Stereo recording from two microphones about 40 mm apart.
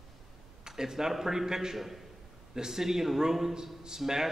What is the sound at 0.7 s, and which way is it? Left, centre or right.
Speech, centre.